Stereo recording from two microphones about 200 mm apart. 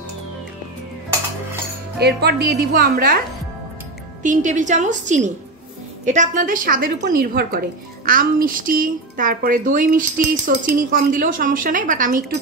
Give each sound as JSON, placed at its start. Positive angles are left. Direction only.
{"t": 2.0, "sound": "a woman's voice", "side_deg": -55}
{"t": 4.2, "sound": "a woman's voice", "side_deg": -40}